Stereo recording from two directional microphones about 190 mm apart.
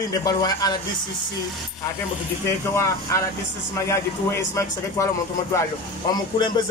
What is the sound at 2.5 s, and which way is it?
Speech, 15° left (ahead or behind).